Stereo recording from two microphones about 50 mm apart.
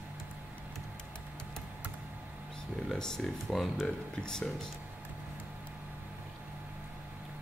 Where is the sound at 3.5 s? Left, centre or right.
Centre.